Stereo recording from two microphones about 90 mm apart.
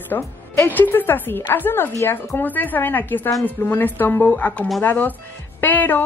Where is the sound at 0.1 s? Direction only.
30° left (ahead or behind).